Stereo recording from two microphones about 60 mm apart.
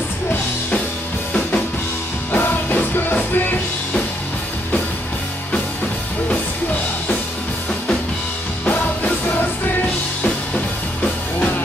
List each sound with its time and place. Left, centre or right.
2.3 s music: left